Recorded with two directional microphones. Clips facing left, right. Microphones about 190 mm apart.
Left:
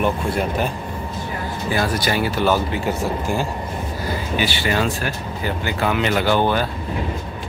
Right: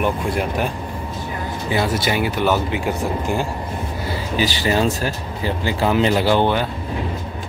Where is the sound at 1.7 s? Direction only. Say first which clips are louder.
Right 1 dB; 25° right (ahead or behind).